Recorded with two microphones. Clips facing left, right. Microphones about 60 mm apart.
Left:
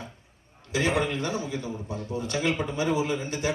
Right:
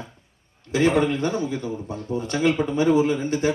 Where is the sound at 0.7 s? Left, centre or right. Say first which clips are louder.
Right 6 dB; right.